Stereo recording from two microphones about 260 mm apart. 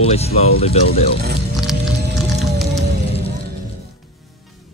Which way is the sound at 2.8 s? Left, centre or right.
Right.